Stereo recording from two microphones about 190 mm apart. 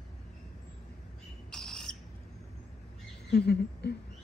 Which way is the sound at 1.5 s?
5° left (ahead or behind).